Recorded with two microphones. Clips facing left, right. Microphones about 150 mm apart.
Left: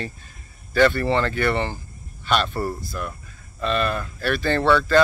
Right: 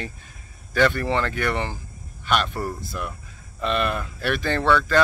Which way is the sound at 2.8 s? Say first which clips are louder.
Left 1 dB; 15° right (ahead or behind).